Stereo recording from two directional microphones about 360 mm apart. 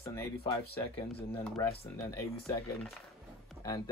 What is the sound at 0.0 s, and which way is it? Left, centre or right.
Speech, centre.